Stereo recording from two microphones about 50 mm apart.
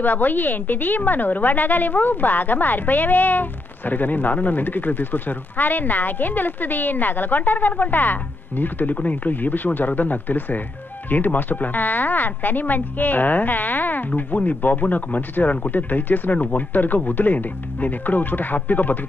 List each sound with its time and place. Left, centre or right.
0.0 s a woman's voice: left